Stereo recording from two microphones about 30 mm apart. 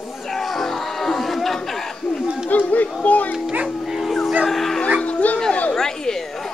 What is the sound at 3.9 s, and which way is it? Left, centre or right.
Dog, centre.